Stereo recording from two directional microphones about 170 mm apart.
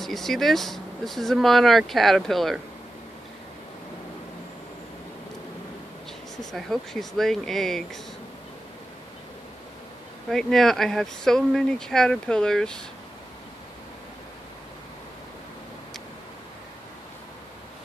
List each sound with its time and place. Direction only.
0.0 s speech: centre (ahead or behind)
6.5 s speech: centre (ahead or behind)
10.3 s speech: centre (ahead or behind)